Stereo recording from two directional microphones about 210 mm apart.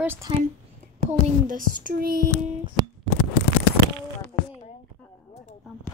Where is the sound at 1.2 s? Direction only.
40° right (ahead or behind).